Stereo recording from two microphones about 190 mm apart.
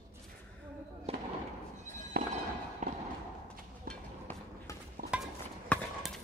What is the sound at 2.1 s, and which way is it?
Fireworks, 50° right (ahead or behind).